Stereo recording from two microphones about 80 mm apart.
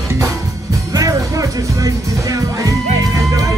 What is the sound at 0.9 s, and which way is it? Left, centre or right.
Music, right.